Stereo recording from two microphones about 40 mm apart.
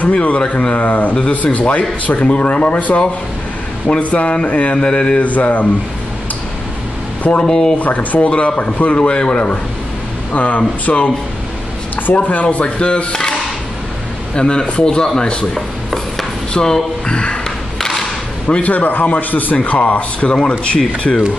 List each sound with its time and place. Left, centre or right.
0.0 s speech: left
7.4 s speech: centre
7.8 s speech: left
8.3 s a man's voice: left
10.3 s speech: left
12.6 s speech: left
14.3 s a man's voice: left
15.5 s chopping: centre
16.5 s a man's voice: centre
17.7 s a sound: centre
18.6 s a man's voice: left
19.5 s a man's voice: left